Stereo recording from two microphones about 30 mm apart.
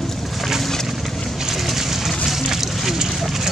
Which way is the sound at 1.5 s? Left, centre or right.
Centre.